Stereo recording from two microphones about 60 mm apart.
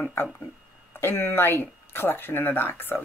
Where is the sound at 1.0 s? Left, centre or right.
Left.